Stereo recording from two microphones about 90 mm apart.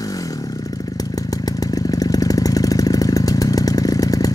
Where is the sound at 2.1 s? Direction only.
45° left (ahead or behind).